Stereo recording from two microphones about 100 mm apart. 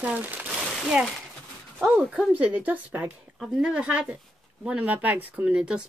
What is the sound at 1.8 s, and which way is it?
Speech, 10° right (ahead or behind).